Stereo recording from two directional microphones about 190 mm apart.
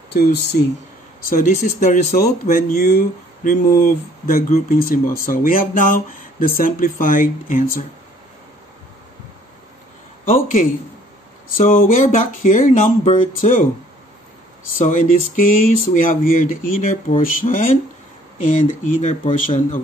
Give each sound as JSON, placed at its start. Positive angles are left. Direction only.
{"t": 0.1, "sound": "speech", "side_deg": 60}
{"t": 1.3, "sound": "speech", "side_deg": 45}
{"t": 10.2, "sound": "speech", "side_deg": 45}
{"t": 14.8, "sound": "speech", "side_deg": 45}